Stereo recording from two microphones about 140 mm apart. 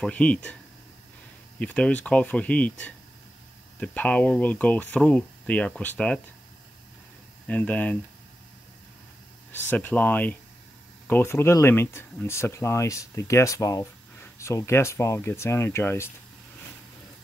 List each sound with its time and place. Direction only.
0.0 s speech: 10° left (ahead or behind)
1.6 s speech: 10° left (ahead or behind)
7.4 s speech: 10° left (ahead or behind)
9.5 s speech: 15° left (ahead or behind)